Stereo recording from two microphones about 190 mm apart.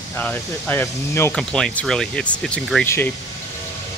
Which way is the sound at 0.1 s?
10° left (ahead or behind).